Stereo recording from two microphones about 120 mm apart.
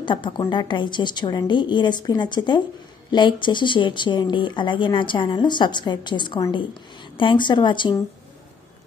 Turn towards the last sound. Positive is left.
turn(degrees=40)  # may be behind; listen again after turning